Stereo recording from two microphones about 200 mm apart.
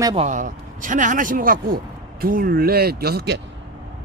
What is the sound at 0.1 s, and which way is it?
Speech, 35° right (ahead or behind).